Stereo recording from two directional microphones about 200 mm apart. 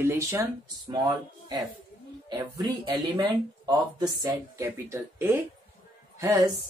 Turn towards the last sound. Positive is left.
turn(degrees=-15)  # may be behind; listen again after turning